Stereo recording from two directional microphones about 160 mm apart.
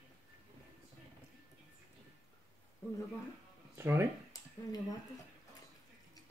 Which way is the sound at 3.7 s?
15° right (ahead or behind).